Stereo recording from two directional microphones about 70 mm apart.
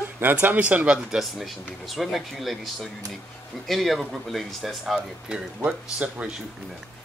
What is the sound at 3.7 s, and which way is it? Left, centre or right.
A woman's voice, centre.